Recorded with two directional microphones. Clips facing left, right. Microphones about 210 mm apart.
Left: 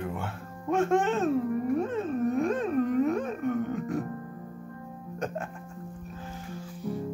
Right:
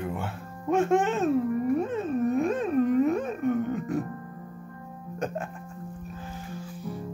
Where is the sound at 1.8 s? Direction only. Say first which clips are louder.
Right 1 dB; 5° right (ahead or behind).